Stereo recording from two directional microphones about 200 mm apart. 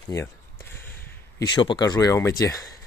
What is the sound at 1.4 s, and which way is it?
Speech, 25° left (ahead or behind).